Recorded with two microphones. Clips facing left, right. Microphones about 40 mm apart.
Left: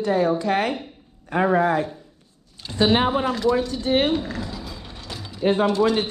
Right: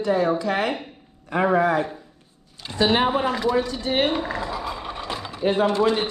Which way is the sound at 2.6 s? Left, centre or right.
Right.